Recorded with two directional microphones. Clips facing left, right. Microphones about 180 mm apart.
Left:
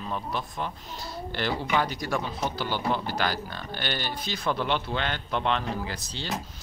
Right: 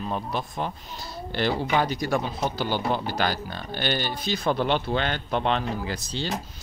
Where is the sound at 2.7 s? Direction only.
20° right (ahead or behind).